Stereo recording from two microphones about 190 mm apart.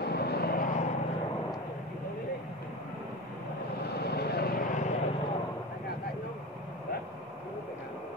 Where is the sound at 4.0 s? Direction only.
60° left (ahead or behind).